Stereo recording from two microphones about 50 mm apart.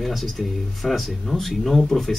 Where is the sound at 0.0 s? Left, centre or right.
Centre.